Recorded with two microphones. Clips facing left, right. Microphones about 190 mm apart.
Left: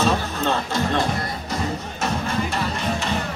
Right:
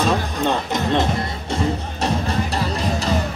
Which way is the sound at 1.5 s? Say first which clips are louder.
Right 6 dB; 35° right (ahead or behind).